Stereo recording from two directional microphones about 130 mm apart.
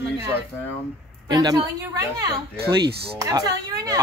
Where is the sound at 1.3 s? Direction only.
30° right (ahead or behind).